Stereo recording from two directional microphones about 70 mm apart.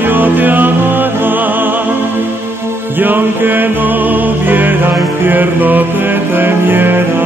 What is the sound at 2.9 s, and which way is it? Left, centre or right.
Music, right.